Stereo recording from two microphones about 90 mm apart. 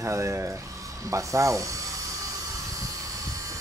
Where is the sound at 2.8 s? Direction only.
40° right (ahead or behind).